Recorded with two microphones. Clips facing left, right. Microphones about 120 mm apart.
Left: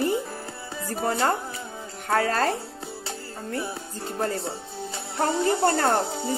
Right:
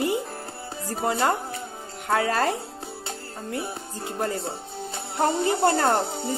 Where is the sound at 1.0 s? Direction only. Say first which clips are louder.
Right 1 dB; 20° right (ahead or behind).